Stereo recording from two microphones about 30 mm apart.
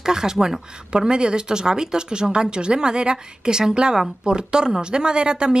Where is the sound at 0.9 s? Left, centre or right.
Right.